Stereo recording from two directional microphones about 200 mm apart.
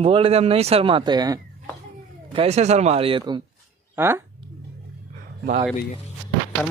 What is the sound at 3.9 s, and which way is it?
Speech, 10° right (ahead or behind).